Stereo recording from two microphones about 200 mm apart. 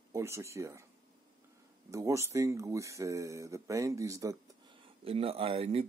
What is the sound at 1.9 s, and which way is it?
Speech, 15° right (ahead or behind).